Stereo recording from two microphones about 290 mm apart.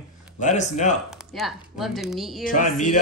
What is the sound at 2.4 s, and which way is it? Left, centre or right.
Speech, left.